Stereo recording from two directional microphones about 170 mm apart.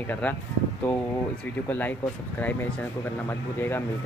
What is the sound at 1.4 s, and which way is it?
Speech, 10° left (ahead or behind).